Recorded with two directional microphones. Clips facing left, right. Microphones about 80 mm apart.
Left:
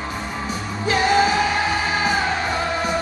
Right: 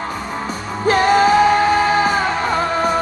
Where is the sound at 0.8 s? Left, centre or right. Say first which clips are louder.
Right 5 dB; right.